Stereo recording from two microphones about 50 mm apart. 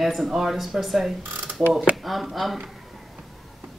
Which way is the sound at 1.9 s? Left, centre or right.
Centre.